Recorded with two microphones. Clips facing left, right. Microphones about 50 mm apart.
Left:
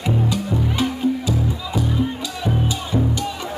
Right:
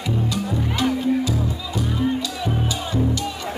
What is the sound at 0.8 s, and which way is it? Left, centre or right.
Music, centre.